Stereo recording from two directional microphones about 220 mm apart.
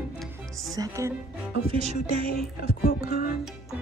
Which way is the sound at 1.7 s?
25° right (ahead or behind).